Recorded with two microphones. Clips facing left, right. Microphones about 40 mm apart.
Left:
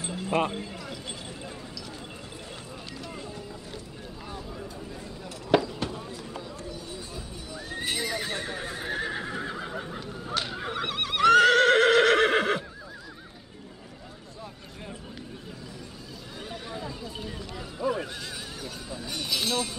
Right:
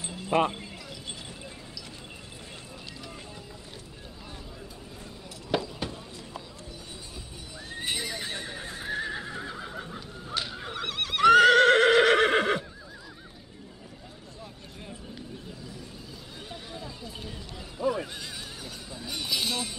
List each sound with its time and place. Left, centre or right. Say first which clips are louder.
0.0 s a sound: left 5 dB; left
0.3 s speech: right 2 dB; centre
7.8 s horse: left 2 dB; centre
8.5 s neigh: left 2 dB; left
11.2 s neigh: right 1 dB; centre
16.6 s a sound: left 6 dB; left
17.7 s neigh: even; centre
18.1 s neigh: left 2 dB; centre
18.9 s a sound: even; centre